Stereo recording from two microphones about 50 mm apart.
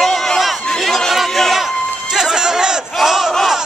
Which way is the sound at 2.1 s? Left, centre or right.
Centre.